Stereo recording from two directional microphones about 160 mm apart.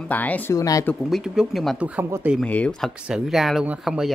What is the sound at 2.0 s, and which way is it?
Speech, 15° right (ahead or behind).